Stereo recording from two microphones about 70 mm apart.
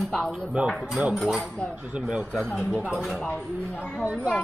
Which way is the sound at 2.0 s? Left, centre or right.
Centre.